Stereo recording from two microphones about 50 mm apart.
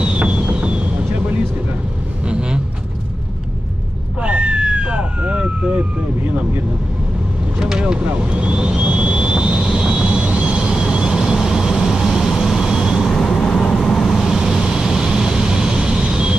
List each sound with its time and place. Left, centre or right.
0.0 s a sound: right
2.2 s vehicle: centre
4.2 s vehicle: right
7.8 s vehicle: right
13.4 s vehicle: centre